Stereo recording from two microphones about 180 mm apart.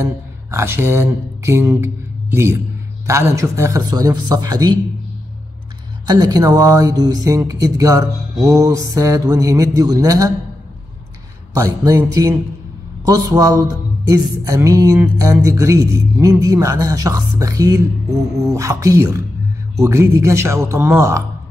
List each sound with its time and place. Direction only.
0.0 s speech: 15° right (ahead or behind)
6.0 s speech: 20° right (ahead or behind)
11.5 s speech: 20° right (ahead or behind)